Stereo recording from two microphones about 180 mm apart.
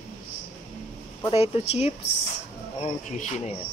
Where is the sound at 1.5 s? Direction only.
35° left (ahead or behind).